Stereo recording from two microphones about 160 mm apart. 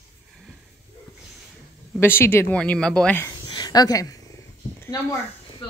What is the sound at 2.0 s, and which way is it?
Speech, 15° left (ahead or behind).